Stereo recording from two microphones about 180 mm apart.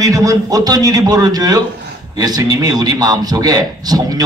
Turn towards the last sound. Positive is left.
turn(degrees=-20)  # may be behind; listen again after turning